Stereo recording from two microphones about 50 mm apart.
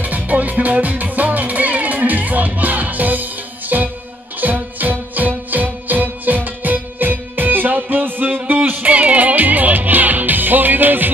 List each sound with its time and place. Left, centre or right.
0.0 s music: right
8.4 s music: right